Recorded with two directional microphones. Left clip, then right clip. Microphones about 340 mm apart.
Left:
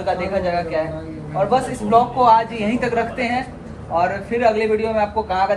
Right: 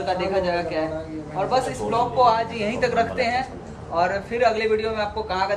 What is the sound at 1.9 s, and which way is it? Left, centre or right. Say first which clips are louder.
A man's voice: left 6 dB; centre.